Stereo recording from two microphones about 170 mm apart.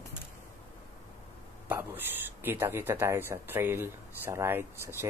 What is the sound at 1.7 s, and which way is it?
Speech, 10° right (ahead or behind).